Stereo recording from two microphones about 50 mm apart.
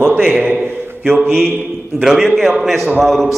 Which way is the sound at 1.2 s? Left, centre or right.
Centre.